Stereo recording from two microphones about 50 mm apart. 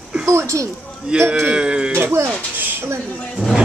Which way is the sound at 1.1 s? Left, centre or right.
Centre.